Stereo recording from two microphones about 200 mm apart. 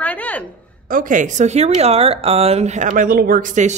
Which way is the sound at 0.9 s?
40° right (ahead or behind).